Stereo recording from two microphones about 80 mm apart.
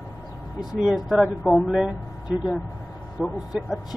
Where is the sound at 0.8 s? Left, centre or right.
Centre.